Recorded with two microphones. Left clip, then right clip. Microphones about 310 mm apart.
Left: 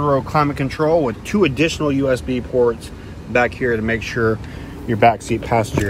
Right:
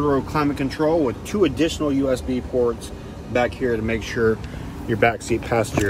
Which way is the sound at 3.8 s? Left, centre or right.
Centre.